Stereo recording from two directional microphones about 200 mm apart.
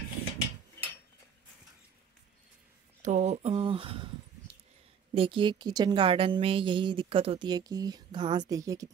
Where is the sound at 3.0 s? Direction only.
35° right (ahead or behind).